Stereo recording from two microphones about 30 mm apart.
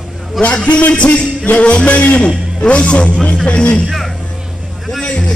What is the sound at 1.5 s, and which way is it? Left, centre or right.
Music, left.